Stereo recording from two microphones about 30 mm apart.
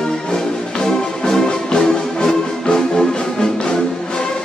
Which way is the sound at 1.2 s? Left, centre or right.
Centre.